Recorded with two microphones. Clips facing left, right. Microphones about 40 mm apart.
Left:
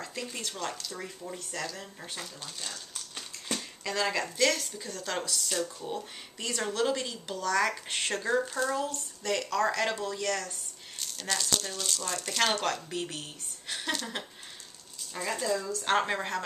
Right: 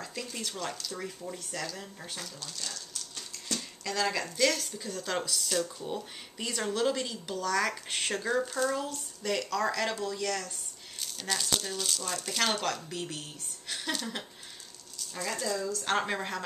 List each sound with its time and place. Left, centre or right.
0.0 s speech: centre
2.4 s a sound: left
3.8 s a woman's voice: centre